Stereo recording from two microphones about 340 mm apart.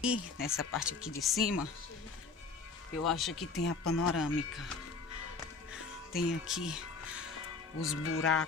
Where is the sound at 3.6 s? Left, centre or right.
Left.